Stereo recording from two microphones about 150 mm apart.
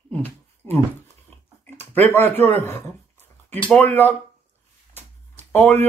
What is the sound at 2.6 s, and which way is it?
Speech, 15° left (ahead or behind).